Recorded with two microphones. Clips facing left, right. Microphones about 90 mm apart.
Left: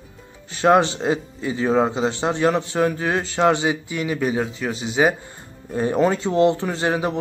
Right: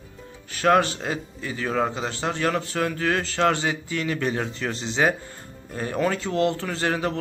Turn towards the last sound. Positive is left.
turn(degrees=15)  # may be behind; listen again after turning